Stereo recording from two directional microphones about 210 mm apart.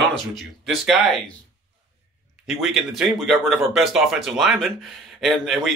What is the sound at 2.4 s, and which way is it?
Speech, centre (ahead or behind).